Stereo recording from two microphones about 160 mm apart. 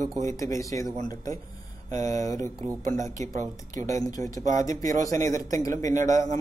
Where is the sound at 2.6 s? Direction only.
50° right (ahead or behind).